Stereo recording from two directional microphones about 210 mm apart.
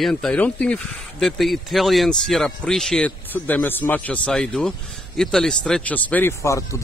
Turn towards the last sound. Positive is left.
turn(degrees=15)  # may be behind; listen again after turning